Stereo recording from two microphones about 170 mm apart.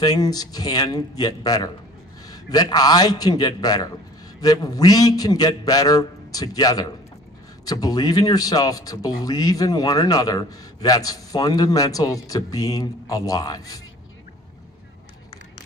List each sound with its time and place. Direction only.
0.0 s speech: 20° left (ahead or behind)